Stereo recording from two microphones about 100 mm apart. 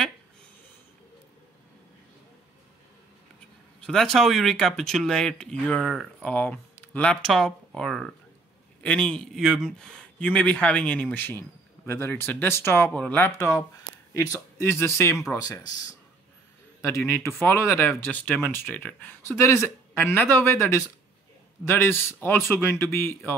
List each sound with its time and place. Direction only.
3.8 s speech: centre (ahead or behind); by 16.0 s 35° left (ahead or behind)
16.8 s speech: 25° left (ahead or behind)